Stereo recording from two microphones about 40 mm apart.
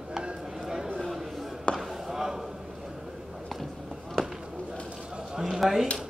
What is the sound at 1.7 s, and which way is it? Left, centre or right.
Chop, left.